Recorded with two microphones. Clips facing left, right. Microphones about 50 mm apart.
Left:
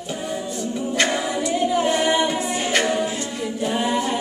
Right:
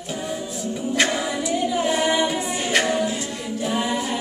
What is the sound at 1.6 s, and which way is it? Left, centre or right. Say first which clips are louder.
Female singing: left 4 dB; centre.